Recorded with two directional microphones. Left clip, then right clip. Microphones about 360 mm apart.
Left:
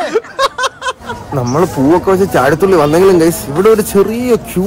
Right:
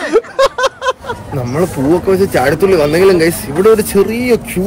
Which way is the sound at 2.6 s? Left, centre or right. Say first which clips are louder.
Even; centre.